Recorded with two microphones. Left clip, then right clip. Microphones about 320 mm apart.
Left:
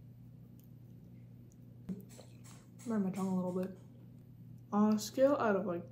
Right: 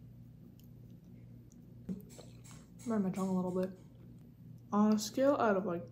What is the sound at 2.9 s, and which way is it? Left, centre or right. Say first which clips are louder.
Speech: right 2 dB; centre.